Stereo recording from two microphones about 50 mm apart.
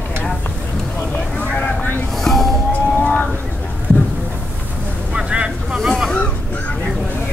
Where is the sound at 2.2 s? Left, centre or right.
Centre.